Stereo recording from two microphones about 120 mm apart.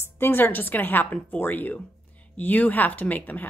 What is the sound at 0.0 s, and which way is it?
Speech, 20° left (ahead or behind).